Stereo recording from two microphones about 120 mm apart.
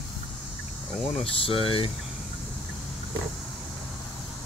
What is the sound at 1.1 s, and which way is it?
Speech, 50° left (ahead or behind).